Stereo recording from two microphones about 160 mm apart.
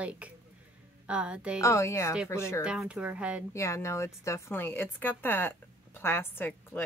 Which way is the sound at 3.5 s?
20° left (ahead or behind).